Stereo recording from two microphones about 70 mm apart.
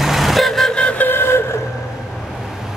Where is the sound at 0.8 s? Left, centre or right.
Centre.